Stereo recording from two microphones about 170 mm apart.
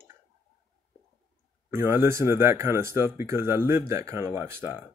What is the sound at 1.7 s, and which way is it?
Speech, 15° right (ahead or behind).